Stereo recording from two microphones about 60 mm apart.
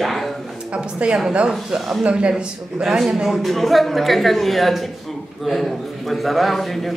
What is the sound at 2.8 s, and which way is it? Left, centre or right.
A man's voice, centre.